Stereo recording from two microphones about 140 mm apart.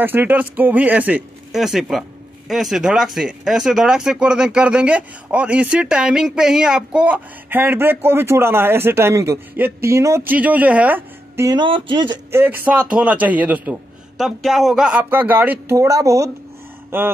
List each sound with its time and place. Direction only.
0.0 s speech: 15° right (ahead or behind)
11.4 s speech: 35° right (ahead or behind)
12.3 s speech: 15° right (ahead or behind)
14.1 s speech: centre (ahead or behind); by 17.1 s 15° right (ahead or behind)